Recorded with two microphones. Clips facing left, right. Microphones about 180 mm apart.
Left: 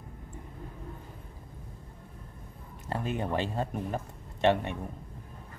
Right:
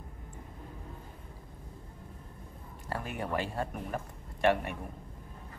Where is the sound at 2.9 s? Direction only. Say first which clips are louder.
Left 3 dB; 20° left (ahead or behind).